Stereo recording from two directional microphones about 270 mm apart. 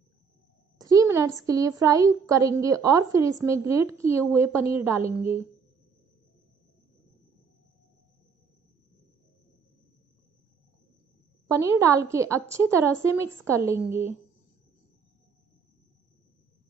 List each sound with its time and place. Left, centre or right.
0.7 s a sound: centre
1.4 s a woman's voice: centre
11.8 s a woman's voice: centre